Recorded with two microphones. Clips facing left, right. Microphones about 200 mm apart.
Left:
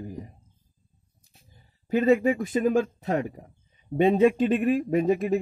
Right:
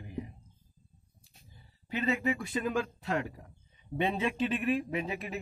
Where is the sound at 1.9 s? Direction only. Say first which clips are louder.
Left 10 dB; 45° left (ahead or behind).